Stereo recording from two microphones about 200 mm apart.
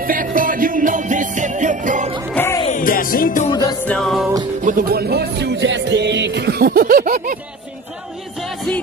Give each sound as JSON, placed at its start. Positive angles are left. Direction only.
{"t": 0.0, "sound": "jingle bell", "side_deg": -45}
{"t": 2.3, "sound": "music", "side_deg": 10}
{"t": 2.7, "sound": "music", "side_deg": 45}
{"t": 3.4, "sound": "music", "side_deg": 20}
{"t": 3.8, "sound": "music", "side_deg": 5}
{"t": 4.6, "sound": "music", "side_deg": -45}
{"t": 8.4, "sound": "music", "side_deg": 5}